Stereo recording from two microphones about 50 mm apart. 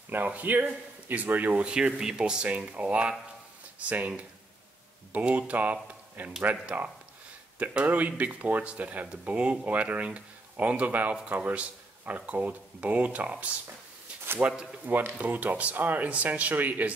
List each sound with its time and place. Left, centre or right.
0.1 s speech: right
1.7 s speech: centre; by 4.1 s right
5.1 s speech: right